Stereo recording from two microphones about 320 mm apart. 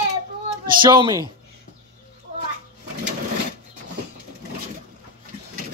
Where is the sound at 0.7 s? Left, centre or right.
Centre.